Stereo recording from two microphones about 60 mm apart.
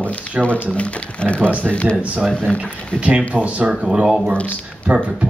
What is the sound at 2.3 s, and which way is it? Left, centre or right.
Speech, centre.